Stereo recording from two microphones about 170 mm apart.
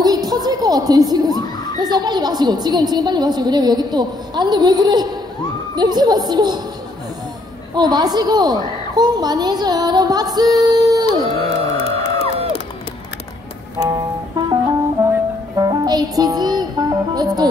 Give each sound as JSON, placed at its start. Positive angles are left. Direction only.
{"t": 0.0, "sound": "speech", "side_deg": -20}
{"t": 7.7, "sound": "speech", "side_deg": -25}
{"t": 11.7, "sound": "music", "side_deg": 35}
{"t": 13.7, "sound": "music", "side_deg": -20}